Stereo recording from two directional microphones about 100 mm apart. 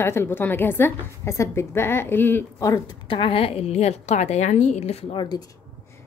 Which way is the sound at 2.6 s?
35° left (ahead or behind).